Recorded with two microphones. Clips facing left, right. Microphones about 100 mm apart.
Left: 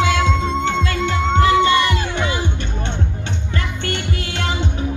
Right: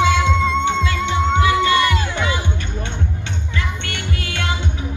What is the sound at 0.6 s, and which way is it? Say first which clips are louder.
Music: even; 55° left (ahead or behind).